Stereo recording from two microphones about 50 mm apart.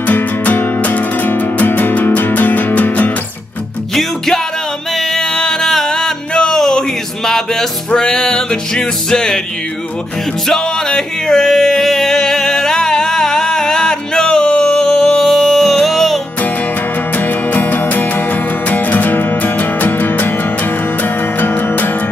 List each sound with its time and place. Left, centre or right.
0.0 s music: left
4.9 s music: centre
10.5 s music: centre
17.1 s music: left